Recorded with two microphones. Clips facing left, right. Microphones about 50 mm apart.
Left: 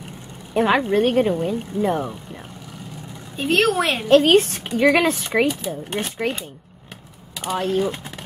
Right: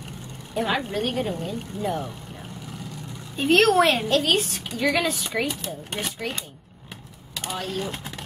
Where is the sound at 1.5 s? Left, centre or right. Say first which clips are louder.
Left 7 dB; centre.